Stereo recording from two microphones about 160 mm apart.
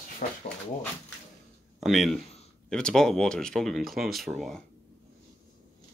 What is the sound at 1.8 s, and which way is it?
Speech, centre (ahead or behind).